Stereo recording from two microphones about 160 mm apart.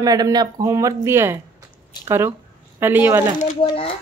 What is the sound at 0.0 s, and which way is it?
Speech, 25° right (ahead or behind).